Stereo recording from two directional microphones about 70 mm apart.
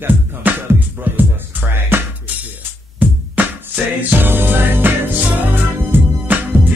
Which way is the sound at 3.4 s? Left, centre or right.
Right.